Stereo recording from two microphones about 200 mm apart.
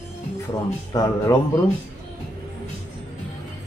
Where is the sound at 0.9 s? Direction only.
15° left (ahead or behind).